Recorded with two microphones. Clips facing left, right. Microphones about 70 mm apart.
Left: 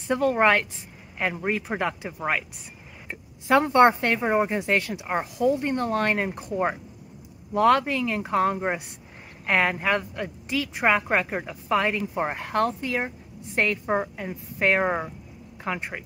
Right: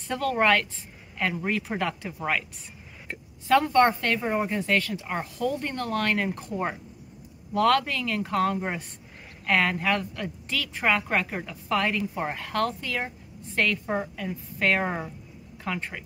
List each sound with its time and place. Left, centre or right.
0.1 s a woman's voice: left
3.4 s a woman's voice: left